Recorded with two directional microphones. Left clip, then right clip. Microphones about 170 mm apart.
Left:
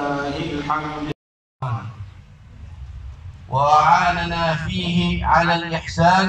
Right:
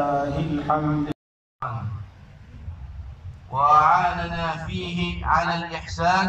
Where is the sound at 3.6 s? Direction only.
60° left (ahead or behind).